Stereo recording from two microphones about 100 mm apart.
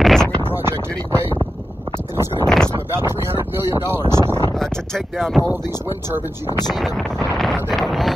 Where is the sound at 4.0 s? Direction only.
40° left (ahead or behind).